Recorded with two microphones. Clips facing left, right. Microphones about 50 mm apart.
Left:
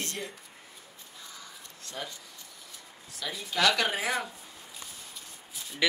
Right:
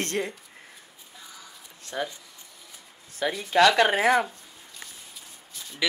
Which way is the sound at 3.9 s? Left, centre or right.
Right.